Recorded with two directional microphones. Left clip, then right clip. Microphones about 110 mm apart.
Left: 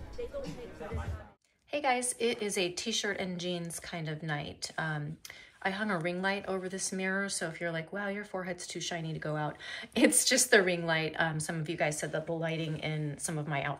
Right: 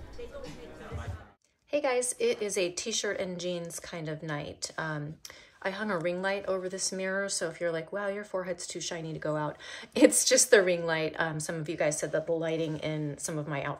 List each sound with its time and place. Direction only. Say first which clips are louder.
1.7 s a woman's voice: right 2 dB; 35° right (ahead or behind)
12.1 s a woman's voice: right 5 dB; 25° right (ahead or behind)
12.4 s a woman's voice: right 4 dB; 45° right (ahead or behind)